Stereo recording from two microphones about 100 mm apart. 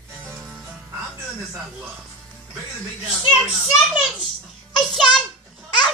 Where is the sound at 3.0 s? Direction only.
5° right (ahead or behind).